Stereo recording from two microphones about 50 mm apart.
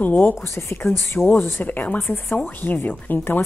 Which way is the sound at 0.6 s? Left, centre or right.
Left.